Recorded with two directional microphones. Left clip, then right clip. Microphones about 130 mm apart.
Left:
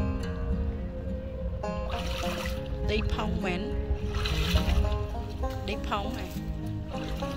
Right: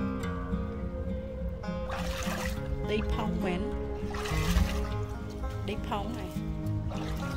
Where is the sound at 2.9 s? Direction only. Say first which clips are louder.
Left 1 dB; 45° right (ahead or behind).